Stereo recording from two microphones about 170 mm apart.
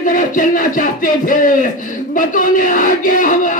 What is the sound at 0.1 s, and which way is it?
Speech, 55° left (ahead or behind).